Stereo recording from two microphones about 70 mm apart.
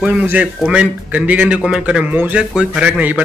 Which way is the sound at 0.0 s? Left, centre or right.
Centre.